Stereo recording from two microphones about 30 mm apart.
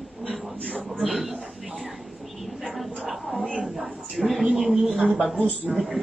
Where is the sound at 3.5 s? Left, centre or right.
Centre.